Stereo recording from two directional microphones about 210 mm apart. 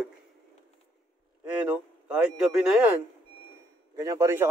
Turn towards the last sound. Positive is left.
turn(degrees=-15)  # may be behind; listen again after turning